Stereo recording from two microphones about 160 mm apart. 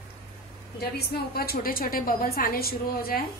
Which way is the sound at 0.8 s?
75° left (ahead or behind).